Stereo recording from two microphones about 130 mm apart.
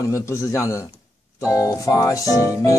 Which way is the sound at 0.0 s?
25° left (ahead or behind).